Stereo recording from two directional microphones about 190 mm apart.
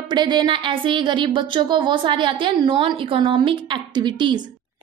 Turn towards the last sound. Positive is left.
turn(degrees=-25)  # may be behind; listen again after turning